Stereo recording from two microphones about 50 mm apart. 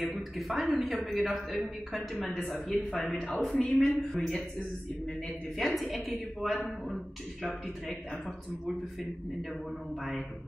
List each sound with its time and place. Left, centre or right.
0.0 s a woman's voice: centre
2.2 s a man's voice: centre
3.3 s a woman's voice: centre
5.6 s a woman's voice: centre